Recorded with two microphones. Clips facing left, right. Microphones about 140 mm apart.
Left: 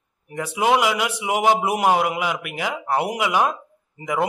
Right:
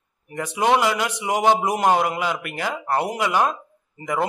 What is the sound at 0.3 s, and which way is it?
A man's voice, 10° left (ahead or behind).